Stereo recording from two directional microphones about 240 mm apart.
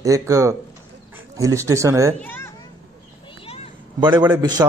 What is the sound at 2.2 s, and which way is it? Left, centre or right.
Children playing, centre.